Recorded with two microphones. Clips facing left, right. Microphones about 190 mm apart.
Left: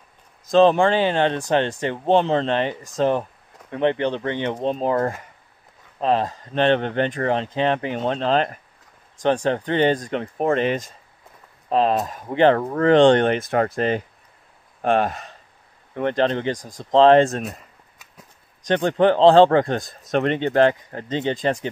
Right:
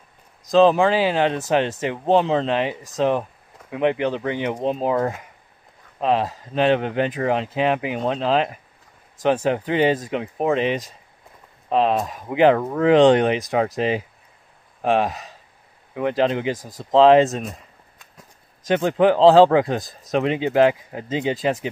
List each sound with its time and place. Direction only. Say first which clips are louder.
0.5 s speech: even; centre (ahead or behind)